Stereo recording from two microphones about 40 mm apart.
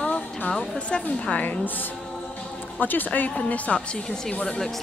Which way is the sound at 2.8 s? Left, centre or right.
Left.